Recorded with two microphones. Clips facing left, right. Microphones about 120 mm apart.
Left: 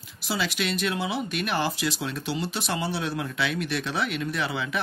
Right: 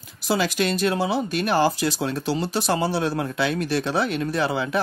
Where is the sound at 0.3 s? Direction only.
45° right (ahead or behind).